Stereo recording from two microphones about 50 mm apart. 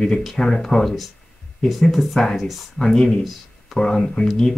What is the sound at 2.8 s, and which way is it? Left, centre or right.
Speech, centre.